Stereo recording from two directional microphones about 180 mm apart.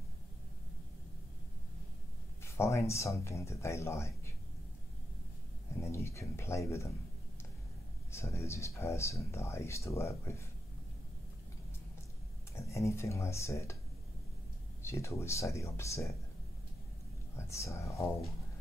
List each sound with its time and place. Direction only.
2.4 s speech: 15° left (ahead or behind)
5.8 s speech: 15° left (ahead or behind)
8.1 s speech: 15° left (ahead or behind)
12.5 s speech: 15° left (ahead or behind)
14.8 s speech: 15° left (ahead or behind)
17.4 s speech: 15° left (ahead or behind)